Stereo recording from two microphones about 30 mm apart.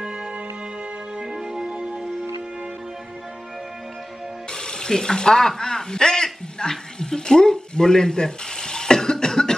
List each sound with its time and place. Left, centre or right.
0.0 s music: right
4.5 s a sound: left
5.6 s speech: left